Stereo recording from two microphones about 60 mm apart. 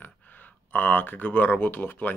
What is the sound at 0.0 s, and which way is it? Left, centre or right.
Speech, left.